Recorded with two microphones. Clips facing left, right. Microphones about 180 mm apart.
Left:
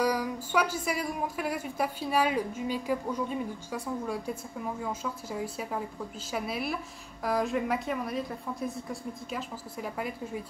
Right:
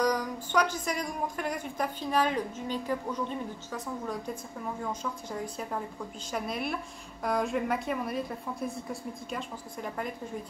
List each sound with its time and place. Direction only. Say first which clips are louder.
0.0 s a woman's voice: even; 10° left (ahead or behind)